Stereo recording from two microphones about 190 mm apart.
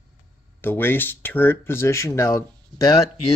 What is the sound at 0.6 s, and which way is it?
Speech, 10° left (ahead or behind).